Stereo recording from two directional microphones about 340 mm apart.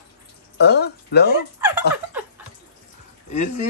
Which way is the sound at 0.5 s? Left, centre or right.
Left.